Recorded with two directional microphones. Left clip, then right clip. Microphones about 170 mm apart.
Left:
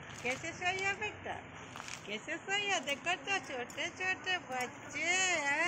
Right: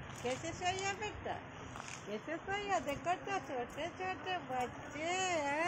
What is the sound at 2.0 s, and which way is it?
Speech, 40° right (ahead or behind).